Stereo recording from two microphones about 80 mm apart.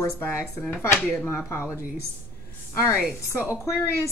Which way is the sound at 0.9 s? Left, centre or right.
Centre.